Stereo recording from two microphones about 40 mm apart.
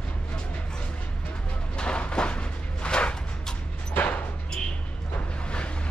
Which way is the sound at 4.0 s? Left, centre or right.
Left.